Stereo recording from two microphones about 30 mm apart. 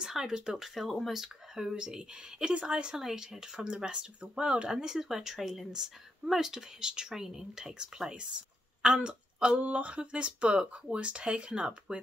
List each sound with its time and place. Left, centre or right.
0.1 s speech: right
0.6 s speech: centre
1.8 s speech: right
3.0 s speech: centre
3.3 s speech: right
4.8 s speech: centre
7.2 s a woman's voice: centre; by 9.6 s right
9.6 s speech: right